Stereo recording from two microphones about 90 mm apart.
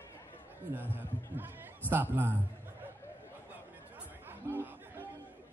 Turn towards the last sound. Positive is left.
turn(degrees=-20)  # may be behind; listen again after turning